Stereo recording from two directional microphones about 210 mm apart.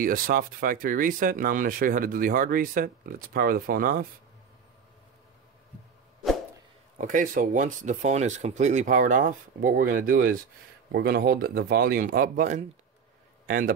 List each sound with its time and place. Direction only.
0.0 s speech: 40° right (ahead or behind)
7.0 s speech: 40° right (ahead or behind)